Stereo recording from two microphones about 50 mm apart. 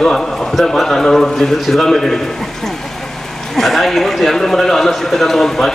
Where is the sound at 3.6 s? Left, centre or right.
Centre.